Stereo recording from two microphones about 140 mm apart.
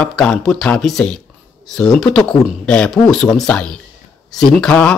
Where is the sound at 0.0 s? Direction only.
5° left (ahead or behind).